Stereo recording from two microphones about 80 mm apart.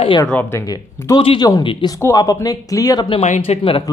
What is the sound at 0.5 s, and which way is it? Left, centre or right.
Speech, left.